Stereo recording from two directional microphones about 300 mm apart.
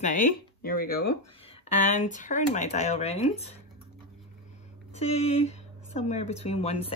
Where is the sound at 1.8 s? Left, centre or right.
Left.